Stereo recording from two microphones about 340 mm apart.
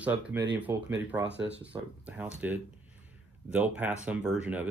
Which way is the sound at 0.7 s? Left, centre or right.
Right.